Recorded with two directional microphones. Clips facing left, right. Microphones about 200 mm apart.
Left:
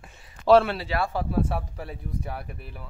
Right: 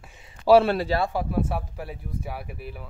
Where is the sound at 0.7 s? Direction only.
35° right (ahead or behind).